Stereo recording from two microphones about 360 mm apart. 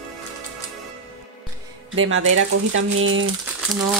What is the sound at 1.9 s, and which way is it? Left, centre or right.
Speech, right.